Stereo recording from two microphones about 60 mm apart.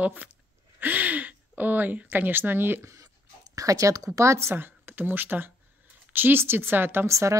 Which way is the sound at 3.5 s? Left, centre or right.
Right.